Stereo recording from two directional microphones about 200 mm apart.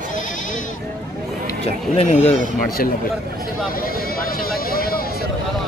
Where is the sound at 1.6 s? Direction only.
30° left (ahead or behind).